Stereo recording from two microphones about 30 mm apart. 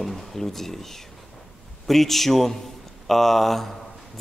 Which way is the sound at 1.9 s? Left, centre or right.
Centre.